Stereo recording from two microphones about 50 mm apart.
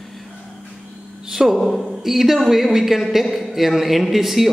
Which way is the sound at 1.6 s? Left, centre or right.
Centre.